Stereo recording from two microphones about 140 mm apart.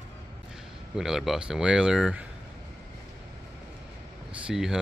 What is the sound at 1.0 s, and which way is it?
Speech, centre (ahead or behind).